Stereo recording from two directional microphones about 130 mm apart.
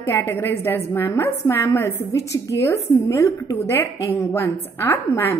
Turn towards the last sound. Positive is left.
turn(degrees=20)  # may be behind; listen again after turning